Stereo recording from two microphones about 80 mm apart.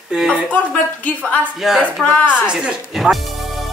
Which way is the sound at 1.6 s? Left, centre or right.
Centre.